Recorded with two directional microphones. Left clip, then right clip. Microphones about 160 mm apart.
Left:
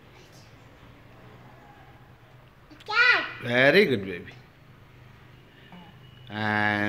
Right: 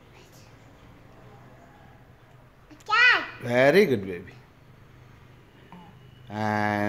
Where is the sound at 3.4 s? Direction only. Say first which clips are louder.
Even; 20° right (ahead or behind).